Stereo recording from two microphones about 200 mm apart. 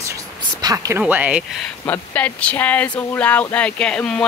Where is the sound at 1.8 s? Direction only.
10° left (ahead or behind).